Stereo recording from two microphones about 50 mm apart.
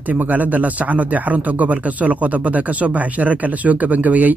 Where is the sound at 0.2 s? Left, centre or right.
Right.